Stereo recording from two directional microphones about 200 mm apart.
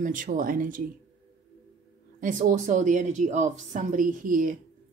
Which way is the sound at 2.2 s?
40° right (ahead or behind).